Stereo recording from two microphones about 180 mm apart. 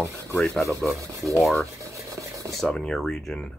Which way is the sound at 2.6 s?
Centre (ahead or behind).